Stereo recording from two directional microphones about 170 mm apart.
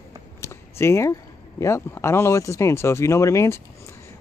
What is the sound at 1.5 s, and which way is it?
Speech, 15° left (ahead or behind).